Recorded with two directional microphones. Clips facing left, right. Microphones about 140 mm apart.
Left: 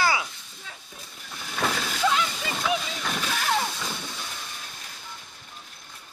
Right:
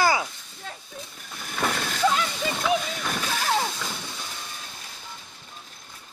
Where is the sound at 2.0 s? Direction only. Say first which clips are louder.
Right 2 dB; 30° right (ahead or behind).